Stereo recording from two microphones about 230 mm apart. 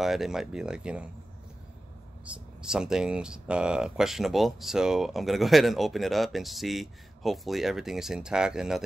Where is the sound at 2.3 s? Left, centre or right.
Centre.